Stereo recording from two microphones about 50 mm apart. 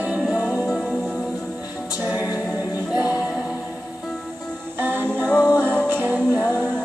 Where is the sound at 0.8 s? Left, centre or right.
Centre.